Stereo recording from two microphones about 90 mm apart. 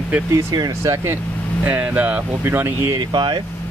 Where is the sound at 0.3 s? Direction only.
40° right (ahead or behind).